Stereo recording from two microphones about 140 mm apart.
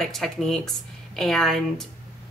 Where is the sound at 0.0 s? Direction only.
Centre (ahead or behind).